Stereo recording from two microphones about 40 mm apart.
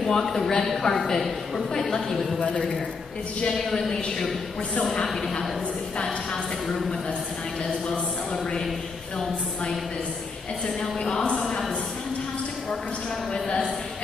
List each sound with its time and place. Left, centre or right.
0.0 s a man's voice: centre
5.0 s a man's voice: centre
7.9 s a man's voice: left
10.8 s a man's voice: centre
13.3 s a man's voice: left